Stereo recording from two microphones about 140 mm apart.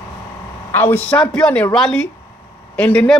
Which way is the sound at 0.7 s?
15° left (ahead or behind).